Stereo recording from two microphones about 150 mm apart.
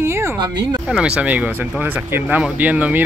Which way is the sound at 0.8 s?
5° right (ahead or behind).